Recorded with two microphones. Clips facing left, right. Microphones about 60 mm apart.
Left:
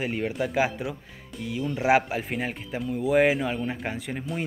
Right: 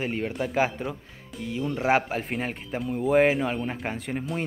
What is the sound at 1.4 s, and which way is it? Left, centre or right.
Speech, centre.